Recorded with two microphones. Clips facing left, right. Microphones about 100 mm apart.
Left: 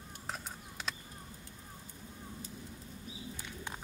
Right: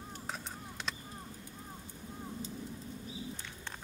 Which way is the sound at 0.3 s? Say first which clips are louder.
Left 1 dB; 5° left (ahead or behind).